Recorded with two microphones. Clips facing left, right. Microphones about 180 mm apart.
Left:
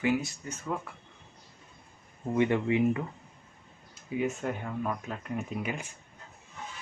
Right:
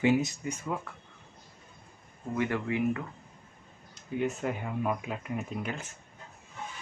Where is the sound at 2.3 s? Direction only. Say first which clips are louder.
Left 4 dB; 20° left (ahead or behind).